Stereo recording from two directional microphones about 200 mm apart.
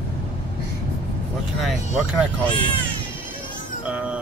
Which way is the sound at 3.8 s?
5° right (ahead or behind).